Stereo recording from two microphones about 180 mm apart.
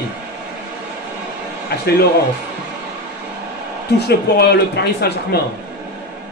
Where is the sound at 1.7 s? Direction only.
65° left (ahead or behind).